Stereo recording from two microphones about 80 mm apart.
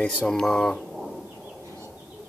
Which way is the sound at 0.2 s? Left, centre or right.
Centre.